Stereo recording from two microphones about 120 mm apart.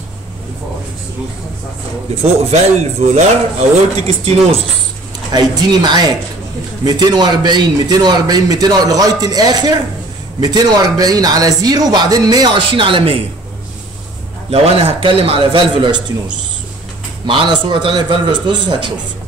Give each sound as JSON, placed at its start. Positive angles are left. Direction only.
{"t": 2.2, "sound": "a man's voice", "side_deg": -70}
{"t": 5.3, "sound": "a man's voice", "side_deg": -35}
{"t": 14.5, "sound": "a man's voice", "side_deg": -55}
{"t": 17.3, "sound": "a man's voice", "side_deg": -45}